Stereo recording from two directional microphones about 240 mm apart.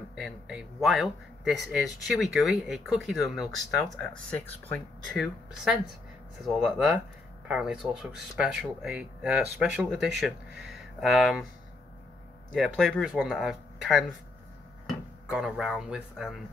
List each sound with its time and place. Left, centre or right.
0.1 s speech: centre
12.4 s speech: centre